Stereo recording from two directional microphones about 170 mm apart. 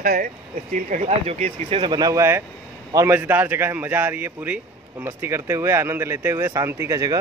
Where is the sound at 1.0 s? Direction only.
35° right (ahead or behind).